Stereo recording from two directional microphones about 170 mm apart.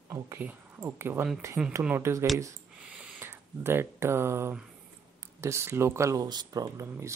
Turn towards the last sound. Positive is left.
turn(degrees=-20)  # may be behind; listen again after turning